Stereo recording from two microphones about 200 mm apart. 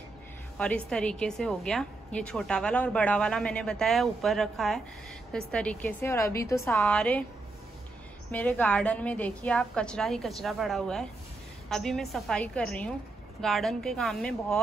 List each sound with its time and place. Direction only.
0.6 s a woman's voice: 5° left (ahead or behind)
8.3 s a woman's voice: 5° left (ahead or behind)